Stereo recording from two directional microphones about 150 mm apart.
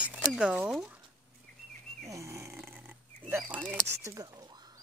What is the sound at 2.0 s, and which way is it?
Snoring, 20° right (ahead or behind).